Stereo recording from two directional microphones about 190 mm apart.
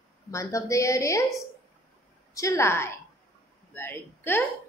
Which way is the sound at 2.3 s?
15° left (ahead or behind).